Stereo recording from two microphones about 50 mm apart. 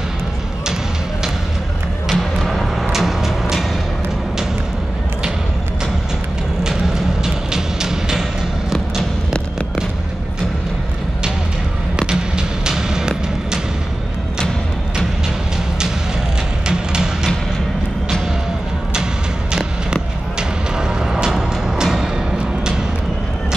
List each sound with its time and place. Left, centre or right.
2.1 s music: centre
6.6 s vehicle: centre
7.5 s music: centre
12.0 s music: centre
16.6 s music: centre
19.5 s music: centre